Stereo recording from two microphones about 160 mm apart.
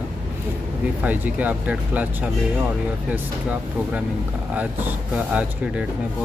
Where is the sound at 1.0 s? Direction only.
10° right (ahead or behind).